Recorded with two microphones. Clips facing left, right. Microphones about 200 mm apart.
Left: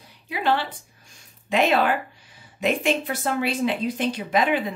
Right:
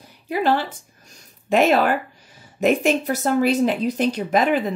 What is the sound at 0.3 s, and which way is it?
Speech, 45° right (ahead or behind).